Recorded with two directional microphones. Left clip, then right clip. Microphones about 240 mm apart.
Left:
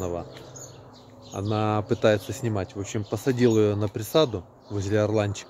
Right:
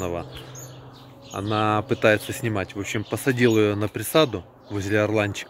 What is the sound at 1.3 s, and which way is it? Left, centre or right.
Speech, centre.